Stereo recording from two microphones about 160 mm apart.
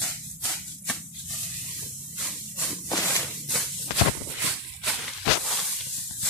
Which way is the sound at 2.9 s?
15° left (ahead or behind).